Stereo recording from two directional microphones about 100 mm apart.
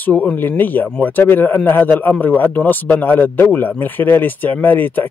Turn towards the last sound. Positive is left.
turn(degrees=20)  # may be behind; listen again after turning